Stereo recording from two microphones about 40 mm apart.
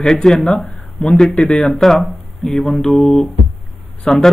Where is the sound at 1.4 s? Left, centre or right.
Left.